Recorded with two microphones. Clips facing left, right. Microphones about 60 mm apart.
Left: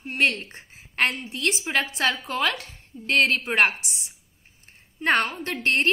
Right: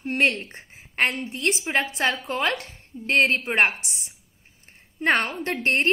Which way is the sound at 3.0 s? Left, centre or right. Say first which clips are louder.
Right 1 dB; right.